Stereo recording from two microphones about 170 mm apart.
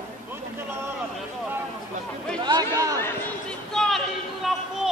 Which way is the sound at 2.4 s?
20° right (ahead or behind).